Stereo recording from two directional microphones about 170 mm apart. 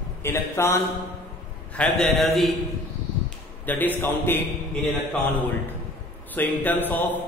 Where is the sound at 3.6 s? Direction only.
10° left (ahead or behind).